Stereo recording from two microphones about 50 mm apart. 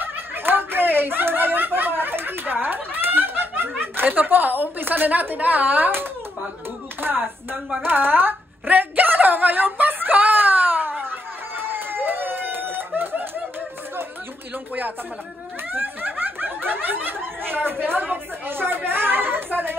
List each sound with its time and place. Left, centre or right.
0.0 s snicker: right
3.8 s a woman's voice: right
7.7 s a sound: right
15.7 s speech: right